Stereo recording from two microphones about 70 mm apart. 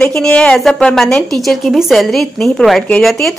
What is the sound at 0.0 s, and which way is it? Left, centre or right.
A woman's voice, centre.